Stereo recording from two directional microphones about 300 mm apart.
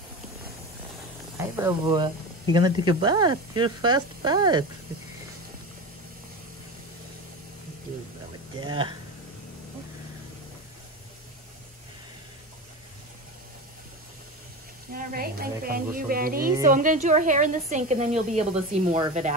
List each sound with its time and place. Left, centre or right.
1.4 s speech: centre
8.5 s speech: centre
15.0 s a sound: right
15.6 s a woman's voice: right